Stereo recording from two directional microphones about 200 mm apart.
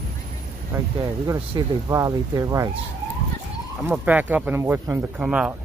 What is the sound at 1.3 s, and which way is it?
Speech, 15° right (ahead or behind).